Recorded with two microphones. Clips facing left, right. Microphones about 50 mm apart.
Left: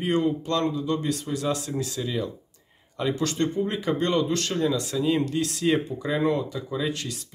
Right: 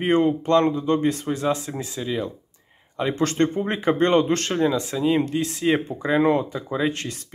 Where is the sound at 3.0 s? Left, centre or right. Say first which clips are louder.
Right 4 dB; right.